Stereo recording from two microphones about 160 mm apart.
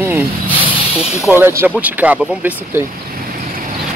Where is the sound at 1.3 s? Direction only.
15° right (ahead or behind).